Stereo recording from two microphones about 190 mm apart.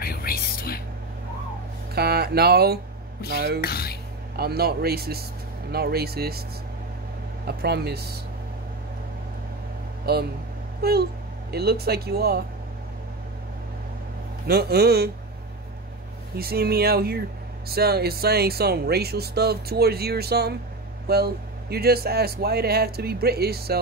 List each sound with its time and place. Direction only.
0.0 s music: 50° left (ahead or behind)
2.0 s speech: 55° right (ahead or behind)
3.6 s speech: 55° left (ahead or behind)
4.4 s speech: 55° right (ahead or behind)
7.4 s speech: 60° right (ahead or behind)
10.8 s speech: 55° right (ahead or behind)
14.5 s speech: 55° right (ahead or behind)
16.3 s speech: 55° right (ahead or behind)